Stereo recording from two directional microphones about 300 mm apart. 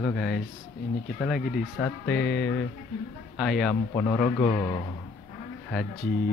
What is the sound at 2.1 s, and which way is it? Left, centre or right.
Speech, left.